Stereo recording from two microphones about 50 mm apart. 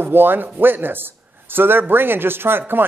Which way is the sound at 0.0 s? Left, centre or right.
Right.